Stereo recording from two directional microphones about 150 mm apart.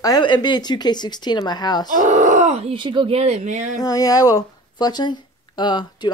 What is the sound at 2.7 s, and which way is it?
Speech, 35° right (ahead or behind).